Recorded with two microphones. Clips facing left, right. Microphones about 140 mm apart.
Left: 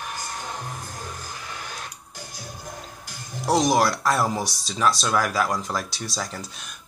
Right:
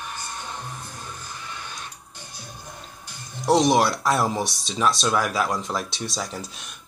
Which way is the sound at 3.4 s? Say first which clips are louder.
Right 2 dB; centre (ahead or behind).